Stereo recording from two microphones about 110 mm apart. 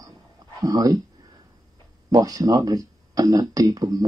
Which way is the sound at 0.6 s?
35° right (ahead or behind).